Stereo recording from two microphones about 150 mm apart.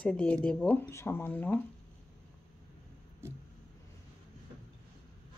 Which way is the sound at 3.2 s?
15° right (ahead or behind).